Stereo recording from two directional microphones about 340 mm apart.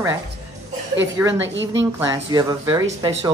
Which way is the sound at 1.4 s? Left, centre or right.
Right.